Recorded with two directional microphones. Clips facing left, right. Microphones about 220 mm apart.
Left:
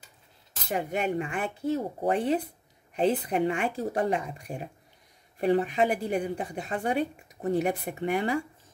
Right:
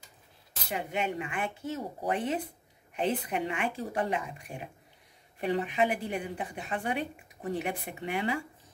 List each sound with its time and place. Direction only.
0.7 s a woman's voice: 45° left (ahead or behind)